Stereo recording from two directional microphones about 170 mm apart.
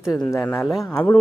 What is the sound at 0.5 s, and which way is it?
Speech, centre (ahead or behind).